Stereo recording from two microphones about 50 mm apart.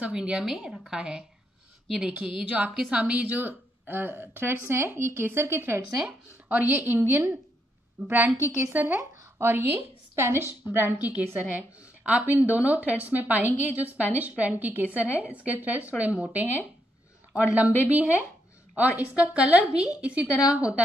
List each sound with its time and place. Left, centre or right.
0.0 s a woman's voice: centre
2.4 s a woman's voice: right
6.5 s a woman's voice: right
8.0 s a woman's voice: right
8.5 s a woman's voice: right
8.7 s a woman's voice: right
11.0 s a woman's voice: right
12.3 s a woman's voice: right